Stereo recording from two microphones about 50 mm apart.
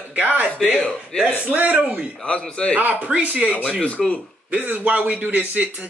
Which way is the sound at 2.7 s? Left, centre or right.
Right.